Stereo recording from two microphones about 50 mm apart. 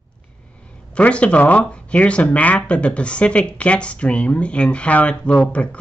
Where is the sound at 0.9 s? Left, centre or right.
Left.